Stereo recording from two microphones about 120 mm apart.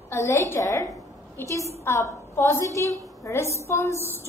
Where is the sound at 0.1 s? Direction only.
25° left (ahead or behind).